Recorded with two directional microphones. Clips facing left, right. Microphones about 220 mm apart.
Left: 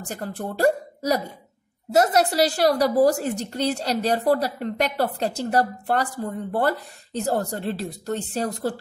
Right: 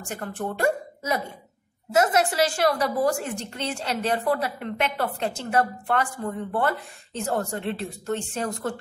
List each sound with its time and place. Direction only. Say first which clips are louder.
0.0 s a woman's voice: even; 35° left (ahead or behind)